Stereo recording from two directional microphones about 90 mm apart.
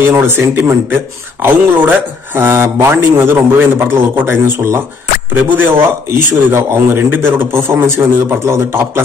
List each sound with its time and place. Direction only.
0.1 s speech: 25° right (ahead or behind)